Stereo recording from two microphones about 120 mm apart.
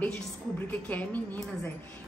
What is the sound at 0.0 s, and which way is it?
A woman's voice, 15° left (ahead or behind).